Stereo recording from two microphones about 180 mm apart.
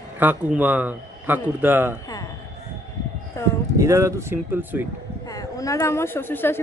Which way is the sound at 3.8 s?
15° right (ahead or behind).